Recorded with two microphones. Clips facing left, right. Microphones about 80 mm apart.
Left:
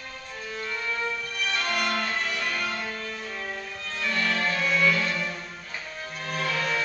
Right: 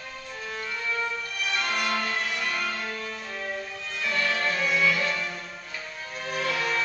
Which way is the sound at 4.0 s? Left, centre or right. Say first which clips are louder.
Even; centre.